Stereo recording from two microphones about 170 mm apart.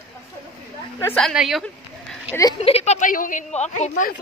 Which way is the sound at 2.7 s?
40° left (ahead or behind).